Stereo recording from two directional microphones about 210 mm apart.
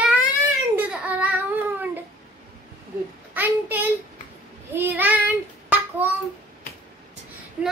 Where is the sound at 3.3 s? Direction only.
10° right (ahead or behind).